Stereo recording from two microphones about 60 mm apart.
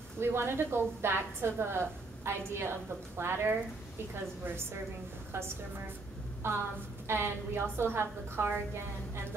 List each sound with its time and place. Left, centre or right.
0.2 s a woman's voice: right
6.4 s a woman's voice: right